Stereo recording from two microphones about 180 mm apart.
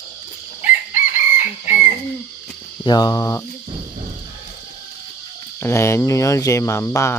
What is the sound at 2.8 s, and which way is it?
Speech, 20° left (ahead or behind).